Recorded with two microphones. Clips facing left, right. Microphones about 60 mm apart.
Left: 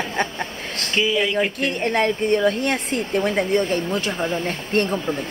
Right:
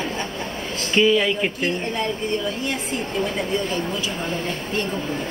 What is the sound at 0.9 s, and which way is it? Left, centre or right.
Speech, centre.